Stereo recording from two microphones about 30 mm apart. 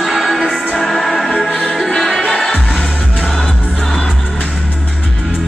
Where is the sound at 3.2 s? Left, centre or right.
Centre.